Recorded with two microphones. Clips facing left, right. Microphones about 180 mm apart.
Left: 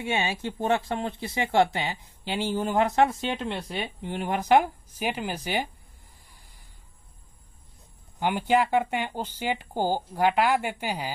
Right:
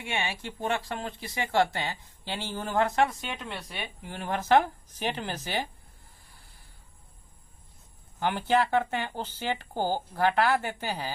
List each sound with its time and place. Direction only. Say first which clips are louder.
0.0 s speech: left 5 dB; 20° left (ahead or behind)
8.2 s speech: left 2 dB; 15° left (ahead or behind)